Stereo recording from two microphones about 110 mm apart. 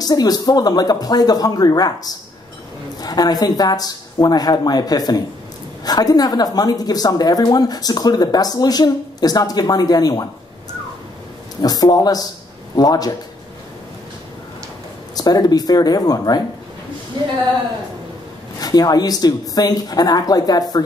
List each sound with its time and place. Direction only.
0.0 s a woman's voice: 35° left (ahead or behind)
3.0 s a woman's voice: 35° left (ahead or behind)
11.6 s a woman's voice: 35° left (ahead or behind)
15.1 s a woman's voice: 35° left (ahead or behind)
17.1 s speech: 45° right (ahead or behind)
18.6 s a woman's voice: 35° left (ahead or behind)